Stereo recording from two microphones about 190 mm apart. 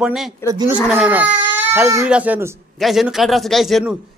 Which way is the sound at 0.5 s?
20° right (ahead or behind).